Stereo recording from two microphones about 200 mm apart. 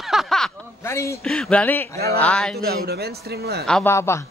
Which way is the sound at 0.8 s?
15° left (ahead or behind).